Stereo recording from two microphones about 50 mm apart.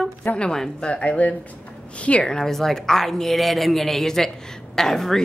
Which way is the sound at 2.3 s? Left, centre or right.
Centre.